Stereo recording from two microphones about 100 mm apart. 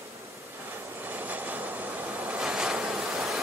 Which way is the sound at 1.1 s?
15° right (ahead or behind).